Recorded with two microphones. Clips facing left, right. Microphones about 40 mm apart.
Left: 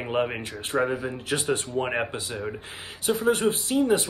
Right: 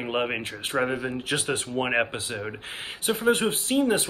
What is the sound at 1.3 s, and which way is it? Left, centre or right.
Speech, right.